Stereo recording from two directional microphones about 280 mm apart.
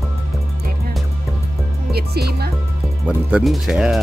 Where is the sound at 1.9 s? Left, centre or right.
Right.